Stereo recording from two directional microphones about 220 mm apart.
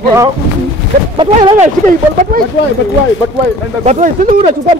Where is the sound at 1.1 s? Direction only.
25° right (ahead or behind).